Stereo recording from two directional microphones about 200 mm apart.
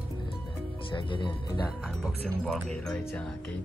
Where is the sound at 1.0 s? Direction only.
25° left (ahead or behind).